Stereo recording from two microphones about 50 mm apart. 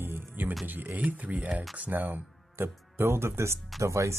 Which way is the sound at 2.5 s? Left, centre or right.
Right.